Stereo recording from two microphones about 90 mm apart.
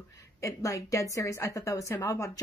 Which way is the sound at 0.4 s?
40° left (ahead or behind).